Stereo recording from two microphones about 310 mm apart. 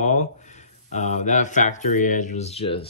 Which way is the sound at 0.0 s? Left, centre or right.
Left.